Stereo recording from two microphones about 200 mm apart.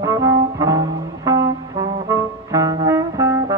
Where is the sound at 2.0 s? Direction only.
15° right (ahead or behind).